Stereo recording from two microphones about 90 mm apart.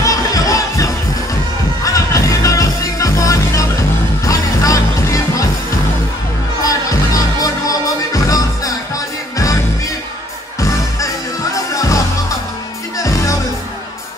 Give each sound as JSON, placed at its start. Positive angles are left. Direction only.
{"t": 0.0, "sound": "music", "side_deg": 40}
{"t": 6.6, "sound": "music", "side_deg": 40}
{"t": 11.5, "sound": "music", "side_deg": 40}